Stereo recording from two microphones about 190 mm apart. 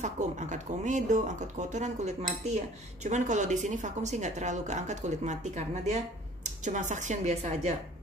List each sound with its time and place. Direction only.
0.0 s speech: 40° right (ahead or behind)